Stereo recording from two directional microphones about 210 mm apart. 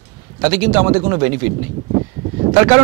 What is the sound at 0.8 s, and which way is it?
Speech, 25° right (ahead or behind).